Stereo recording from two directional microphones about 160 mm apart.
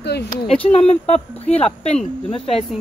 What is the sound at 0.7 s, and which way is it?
Speech, 45° left (ahead or behind).